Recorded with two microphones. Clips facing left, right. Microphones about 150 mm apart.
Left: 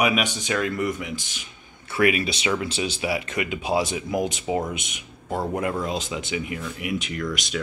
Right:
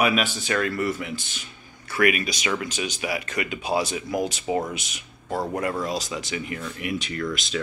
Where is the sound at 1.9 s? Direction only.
25° left (ahead or behind); by 7.2 s 10° left (ahead or behind).